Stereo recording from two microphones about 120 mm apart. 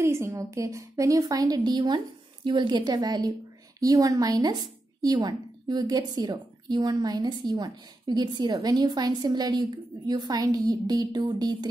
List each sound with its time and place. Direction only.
0.0 s a woman's voice: 20° right (ahead or behind)